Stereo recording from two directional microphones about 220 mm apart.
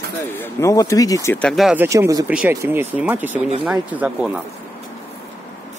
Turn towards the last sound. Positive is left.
turn(degrees=-5)  # may be behind; listen again after turning